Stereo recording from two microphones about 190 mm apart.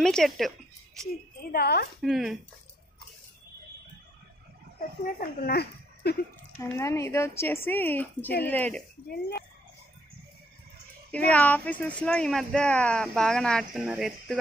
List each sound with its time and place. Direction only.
0.0 s speech: centre (ahead or behind)
1.5 s a woman's voice: 55° left (ahead or behind)
2.0 s speech: centre (ahead or behind)
5.0 s speech: 55° left (ahead or behind)
6.6 s speech: 15° left (ahead or behind)
11.1 s speech: 10° left (ahead or behind)